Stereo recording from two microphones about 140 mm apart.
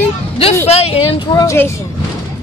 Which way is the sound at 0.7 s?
45° left (ahead or behind).